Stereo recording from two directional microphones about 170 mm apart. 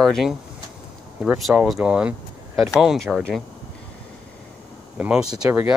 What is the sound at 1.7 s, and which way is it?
Speech, 5° right (ahead or behind).